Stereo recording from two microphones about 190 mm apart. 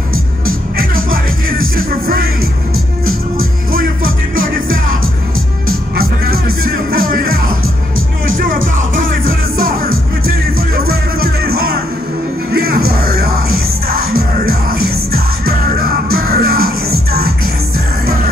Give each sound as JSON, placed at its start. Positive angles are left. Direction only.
{"t": 0.5, "sound": "music", "side_deg": -50}
{"t": 3.3, "sound": "music", "side_deg": -50}
{"t": 5.9, "sound": "music", "side_deg": -50}
{"t": 8.9, "sound": "music", "side_deg": -50}
{"t": 12.5, "sound": "music", "side_deg": -55}
{"t": 14.4, "sound": "music", "side_deg": -50}